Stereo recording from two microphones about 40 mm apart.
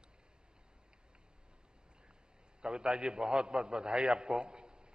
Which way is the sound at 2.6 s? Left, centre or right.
Right.